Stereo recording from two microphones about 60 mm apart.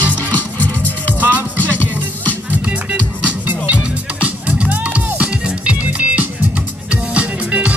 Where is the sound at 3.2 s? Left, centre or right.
Right.